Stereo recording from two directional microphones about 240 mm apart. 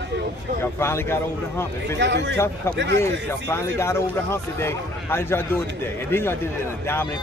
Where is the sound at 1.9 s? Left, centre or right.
Right.